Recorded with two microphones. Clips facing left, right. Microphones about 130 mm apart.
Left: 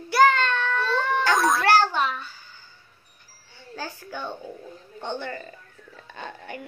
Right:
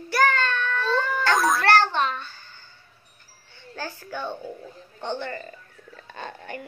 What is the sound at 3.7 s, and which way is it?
A child's voice, 10° left (ahead or behind).